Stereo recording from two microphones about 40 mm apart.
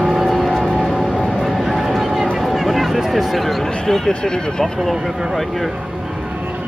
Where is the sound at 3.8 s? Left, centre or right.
Centre.